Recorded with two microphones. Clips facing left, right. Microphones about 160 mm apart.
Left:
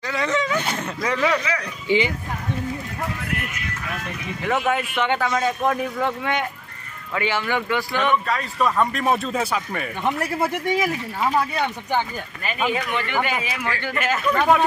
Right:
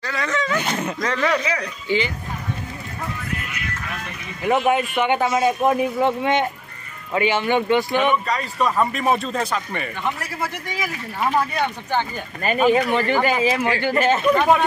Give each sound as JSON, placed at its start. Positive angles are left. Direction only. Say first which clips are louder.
{"t": 0.0, "sound": "a sound", "louder": "left 1 dB", "side_deg": 20}
{"t": 1.0, "sound": "speech", "louder": "left 1 dB", "side_deg": 10}
{"t": 1.9, "sound": "speech", "louder": "left 2 dB", "side_deg": 20}
{"t": 4.5, "sound": "a man's voice", "louder": "right 4 dB", "side_deg": -15}
{"t": 8.3, "sound": "speech", "louder": "even", "side_deg": 0}
{"t": 12.4, "sound": "speech", "louder": "right 7 dB", "side_deg": -40}